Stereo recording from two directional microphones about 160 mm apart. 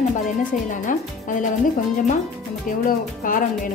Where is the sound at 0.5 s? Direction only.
55° left (ahead or behind).